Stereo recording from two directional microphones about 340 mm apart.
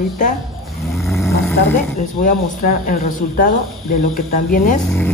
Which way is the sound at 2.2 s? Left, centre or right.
Left.